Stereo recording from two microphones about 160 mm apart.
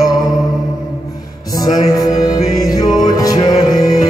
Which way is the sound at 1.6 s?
25° left (ahead or behind).